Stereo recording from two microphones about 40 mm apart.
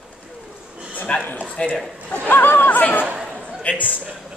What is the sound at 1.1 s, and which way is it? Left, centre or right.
Speech, left.